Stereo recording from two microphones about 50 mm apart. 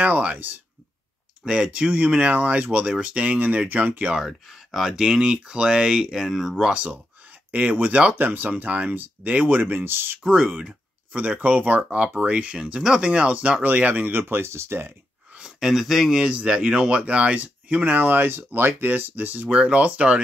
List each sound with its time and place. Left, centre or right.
0.0 s speech: right
1.4 s speech: centre; by 4.1 s right
4.1 s speech: centre
6.7 s speech: right
10.2 s speech: centre
11.1 s speech: right
14.4 s speech: right
15.6 s speech: centre; by 19.5 s right
19.5 s speech: right